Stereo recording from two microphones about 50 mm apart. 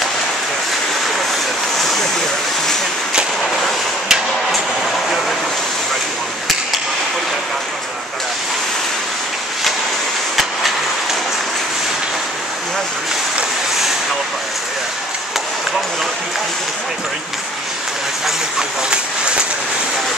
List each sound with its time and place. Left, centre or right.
1.8 s vehicle: centre
3.6 s hammer: centre
10.3 s vehicle: centre
18.9 s a sound: centre